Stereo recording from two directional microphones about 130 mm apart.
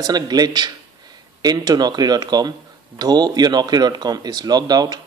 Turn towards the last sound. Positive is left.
turn(degrees=-30)  # may be behind; listen again after turning